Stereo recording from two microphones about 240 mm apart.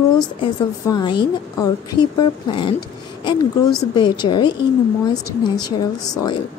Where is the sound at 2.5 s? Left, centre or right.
Left.